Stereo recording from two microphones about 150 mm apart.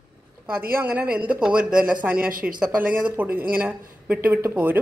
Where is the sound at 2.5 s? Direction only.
10° right (ahead or behind).